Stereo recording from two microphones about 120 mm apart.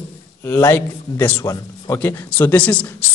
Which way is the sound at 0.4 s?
20° left (ahead or behind).